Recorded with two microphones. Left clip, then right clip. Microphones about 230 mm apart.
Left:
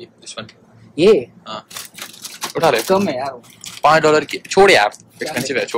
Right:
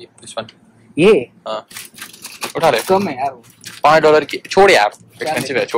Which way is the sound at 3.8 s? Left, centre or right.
Centre.